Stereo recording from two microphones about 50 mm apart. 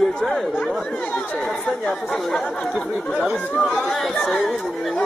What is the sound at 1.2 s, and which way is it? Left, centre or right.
Speech, left.